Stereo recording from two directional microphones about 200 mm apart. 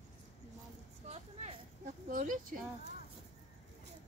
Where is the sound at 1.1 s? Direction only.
30° right (ahead or behind).